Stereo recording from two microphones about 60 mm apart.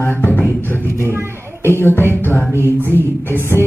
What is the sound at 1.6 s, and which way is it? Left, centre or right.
Speech, left.